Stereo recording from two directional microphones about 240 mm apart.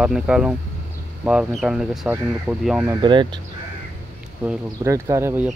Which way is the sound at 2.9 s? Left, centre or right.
Centre.